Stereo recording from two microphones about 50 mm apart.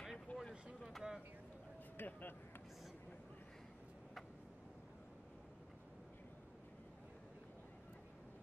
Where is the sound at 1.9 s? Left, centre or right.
Left.